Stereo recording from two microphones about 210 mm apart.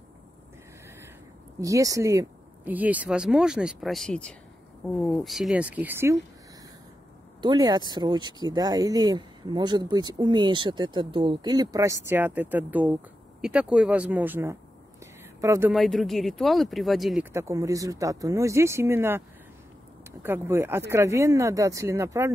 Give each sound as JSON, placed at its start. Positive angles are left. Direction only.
{"t": 1.6, "sound": "speech", "side_deg": -15}
{"t": 7.4, "sound": "speech", "side_deg": -20}
{"t": 15.7, "sound": "speech", "side_deg": 0}
{"t": 17.3, "sound": "speech", "side_deg": -15}